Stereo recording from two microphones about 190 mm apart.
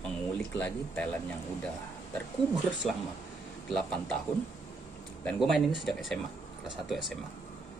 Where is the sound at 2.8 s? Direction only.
Centre (ahead or behind).